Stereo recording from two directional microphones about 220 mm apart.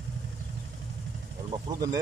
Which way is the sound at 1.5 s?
15° right (ahead or behind).